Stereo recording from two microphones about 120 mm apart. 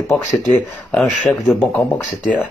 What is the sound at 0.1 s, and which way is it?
Speech, 10° left (ahead or behind).